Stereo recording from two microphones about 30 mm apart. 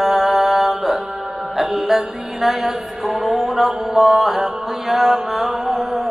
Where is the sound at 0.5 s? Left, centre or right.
Centre.